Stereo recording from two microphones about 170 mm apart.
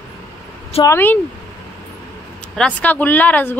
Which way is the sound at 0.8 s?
15° left (ahead or behind).